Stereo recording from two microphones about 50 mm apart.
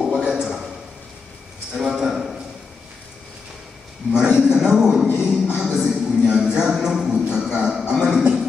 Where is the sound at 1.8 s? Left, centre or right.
Centre.